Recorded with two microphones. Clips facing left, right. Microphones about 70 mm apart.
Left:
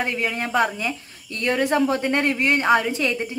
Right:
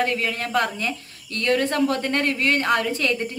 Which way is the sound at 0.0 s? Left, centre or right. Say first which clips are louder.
Right 1 dB; centre.